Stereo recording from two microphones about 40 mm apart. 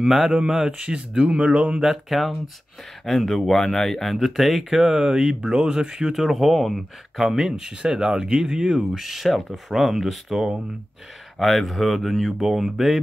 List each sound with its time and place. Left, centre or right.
0.0 s speech: centre
0.7 s speech: right
1.8 s speech: centre
6.1 s speech: centre
11.3 s speech: centre